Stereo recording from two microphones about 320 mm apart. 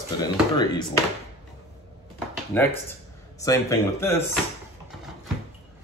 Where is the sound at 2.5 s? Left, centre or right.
Centre.